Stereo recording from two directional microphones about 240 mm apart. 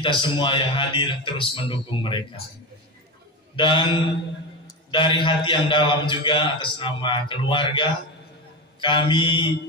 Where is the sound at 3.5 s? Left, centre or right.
Centre.